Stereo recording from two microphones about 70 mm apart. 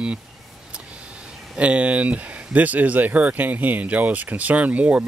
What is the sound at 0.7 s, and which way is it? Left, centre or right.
Vehicle, centre.